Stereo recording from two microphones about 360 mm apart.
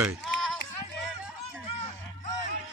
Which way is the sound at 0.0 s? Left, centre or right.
Centre.